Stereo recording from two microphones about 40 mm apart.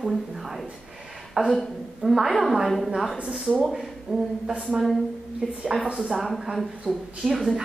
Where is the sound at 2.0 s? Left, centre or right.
Centre.